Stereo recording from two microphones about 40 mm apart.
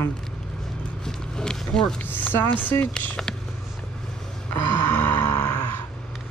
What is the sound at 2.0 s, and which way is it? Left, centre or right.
Speech, left.